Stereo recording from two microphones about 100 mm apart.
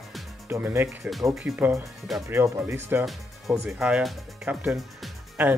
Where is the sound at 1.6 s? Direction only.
20° right (ahead or behind).